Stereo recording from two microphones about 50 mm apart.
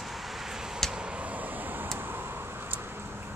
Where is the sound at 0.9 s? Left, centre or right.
Right.